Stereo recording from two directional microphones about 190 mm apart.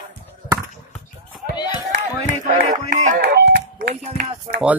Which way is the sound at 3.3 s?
60° right (ahead or behind).